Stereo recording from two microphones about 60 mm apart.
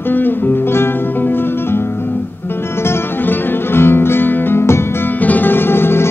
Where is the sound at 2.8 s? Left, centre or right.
Left.